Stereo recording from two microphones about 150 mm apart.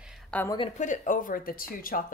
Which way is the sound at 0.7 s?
55° left (ahead or behind).